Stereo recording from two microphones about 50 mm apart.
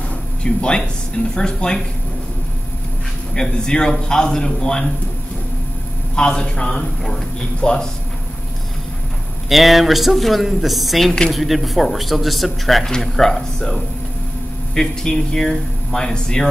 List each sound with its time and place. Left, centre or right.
0.4 s speech: centre
3.3 s speech: centre
6.1 s speech: centre
9.5 s speech: centre